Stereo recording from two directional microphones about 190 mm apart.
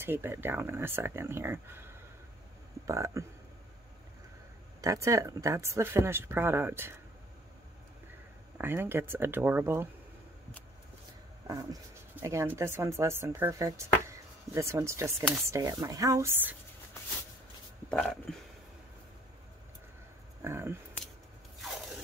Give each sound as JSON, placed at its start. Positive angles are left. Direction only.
{"t": 0.0, "sound": "a woman's voice", "side_deg": -10}
{"t": 4.8, "sound": "a woman's voice", "side_deg": -15}
{"t": 8.5, "sound": "a woman's voice", "side_deg": -10}
{"t": 11.4, "sound": "a woman's voice", "side_deg": -20}
{"t": 17.8, "sound": "a sound", "side_deg": 5}
{"t": 20.4, "sound": "a woman's voice", "side_deg": -10}
{"t": 21.5, "sound": "crunch", "side_deg": 0}